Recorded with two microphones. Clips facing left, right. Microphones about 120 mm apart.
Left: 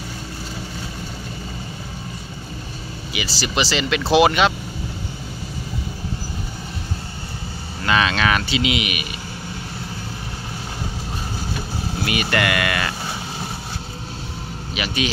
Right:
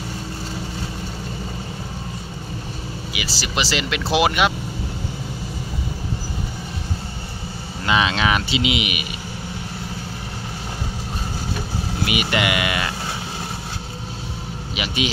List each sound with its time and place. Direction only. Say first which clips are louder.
3.1 s speech: left 4 dB; 5° right (ahead or behind)
7.8 s speech: even; 20° right (ahead or behind)
12.0 s speech: even; 15° right (ahead or behind)